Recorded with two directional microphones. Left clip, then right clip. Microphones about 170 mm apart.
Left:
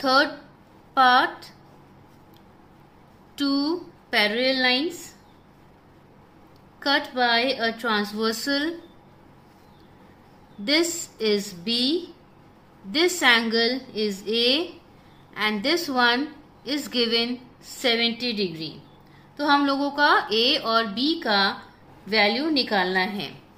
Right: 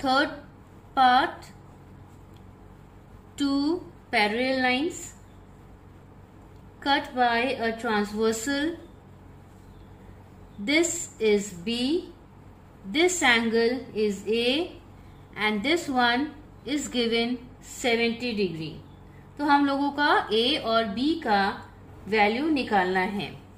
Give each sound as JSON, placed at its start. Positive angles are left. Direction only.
{"t": 0.0, "sound": "a woman's voice", "side_deg": 20}
{"t": 3.3, "sound": "a woman's voice", "side_deg": 20}
{"t": 6.8, "sound": "a woman's voice", "side_deg": 25}
{"t": 10.6, "sound": "a woman's voice", "side_deg": 20}
{"t": 12.9, "sound": "a woman's voice", "side_deg": 20}